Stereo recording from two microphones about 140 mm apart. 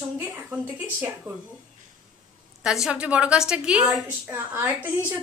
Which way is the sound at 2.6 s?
5° right (ahead or behind).